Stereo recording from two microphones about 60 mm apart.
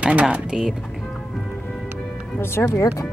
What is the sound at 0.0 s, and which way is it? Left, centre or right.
Speech, right.